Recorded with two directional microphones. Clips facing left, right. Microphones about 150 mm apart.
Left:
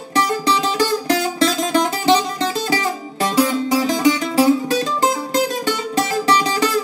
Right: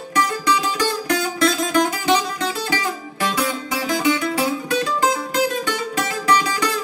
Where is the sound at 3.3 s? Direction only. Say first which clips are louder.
Left 8 dB; 35° left (ahead or behind).